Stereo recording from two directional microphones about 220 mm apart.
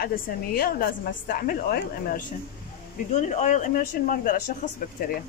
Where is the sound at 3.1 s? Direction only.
30° left (ahead or behind).